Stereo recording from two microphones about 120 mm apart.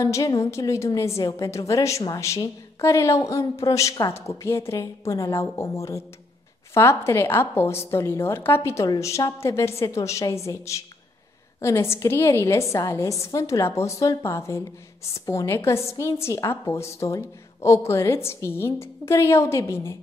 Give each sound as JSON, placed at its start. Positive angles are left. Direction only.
{"t": 0.0, "sound": "a woman's voice", "side_deg": 25}